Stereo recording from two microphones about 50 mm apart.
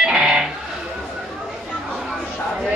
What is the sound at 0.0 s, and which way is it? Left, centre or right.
Music, centre.